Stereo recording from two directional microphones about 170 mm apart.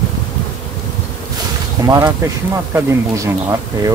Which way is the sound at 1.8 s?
20° right (ahead or behind).